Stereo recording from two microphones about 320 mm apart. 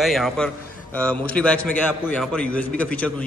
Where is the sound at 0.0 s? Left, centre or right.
Centre.